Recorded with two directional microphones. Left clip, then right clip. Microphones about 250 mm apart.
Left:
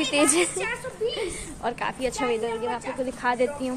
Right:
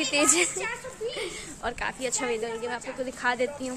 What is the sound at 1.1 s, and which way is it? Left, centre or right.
A woman's voice, centre.